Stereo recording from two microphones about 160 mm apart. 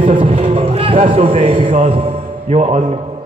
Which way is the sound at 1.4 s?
35° right (ahead or behind).